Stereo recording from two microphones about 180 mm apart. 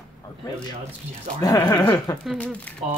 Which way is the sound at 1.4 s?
20° left (ahead or behind).